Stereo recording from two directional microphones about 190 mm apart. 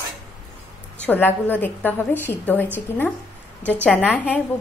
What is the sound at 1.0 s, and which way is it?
A woman's voice, 10° left (ahead or behind).